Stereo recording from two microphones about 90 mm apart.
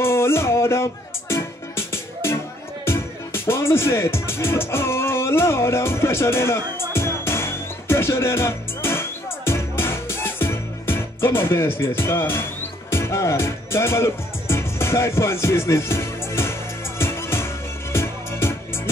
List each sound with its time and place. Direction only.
0.0 s music: 30° left (ahead or behind)
2.8 s speech: 25° left (ahead or behind)
6.9 s music: 30° left (ahead or behind)